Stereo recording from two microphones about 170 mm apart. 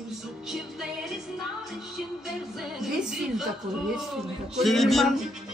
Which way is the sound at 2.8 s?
Centre (ahead or behind).